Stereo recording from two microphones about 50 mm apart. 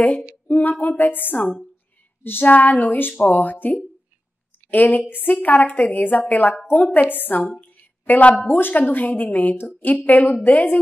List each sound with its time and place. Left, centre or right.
0.5 s a woman's voice: left